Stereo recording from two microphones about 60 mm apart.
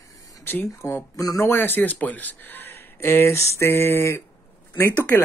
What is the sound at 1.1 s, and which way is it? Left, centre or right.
Speech, left.